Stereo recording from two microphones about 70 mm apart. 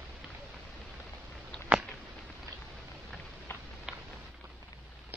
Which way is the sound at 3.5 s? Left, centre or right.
Left.